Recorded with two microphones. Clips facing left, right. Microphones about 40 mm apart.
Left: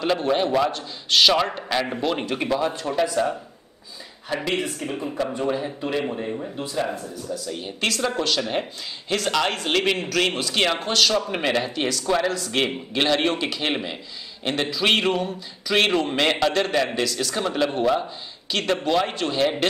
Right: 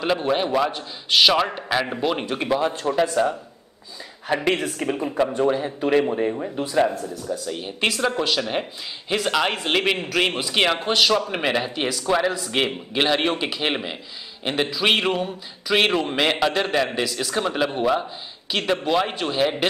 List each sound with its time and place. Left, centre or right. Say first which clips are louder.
0.0 s speech: even; centre
4.5 s speech: right 2 dB; right
5.0 s a man's voice: right 4 dB; right
6.3 s a man's voice: right 5 dB; centre